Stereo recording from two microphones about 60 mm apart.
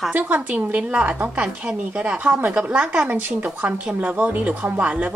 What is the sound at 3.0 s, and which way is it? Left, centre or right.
A woman's voice, right.